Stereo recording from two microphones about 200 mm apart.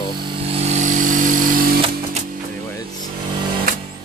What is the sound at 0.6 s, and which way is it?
Vehicle, 40° right (ahead or behind).